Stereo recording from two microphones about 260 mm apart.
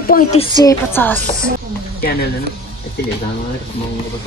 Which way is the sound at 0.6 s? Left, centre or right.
Centre.